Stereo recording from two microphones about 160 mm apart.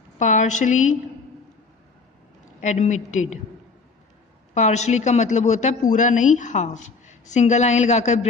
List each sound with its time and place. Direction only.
0.2 s a woman's voice: 50° left (ahead or behind)
2.6 s a woman's voice: 45° left (ahead or behind)
4.6 s a woman's voice: 45° left (ahead or behind)